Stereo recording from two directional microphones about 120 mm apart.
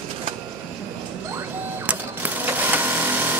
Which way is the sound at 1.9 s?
15° right (ahead or behind).